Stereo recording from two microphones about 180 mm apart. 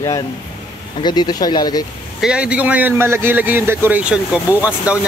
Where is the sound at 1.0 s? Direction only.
25° left (ahead or behind).